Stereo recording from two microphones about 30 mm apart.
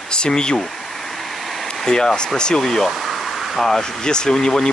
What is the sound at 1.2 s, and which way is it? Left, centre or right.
Vehicle, centre.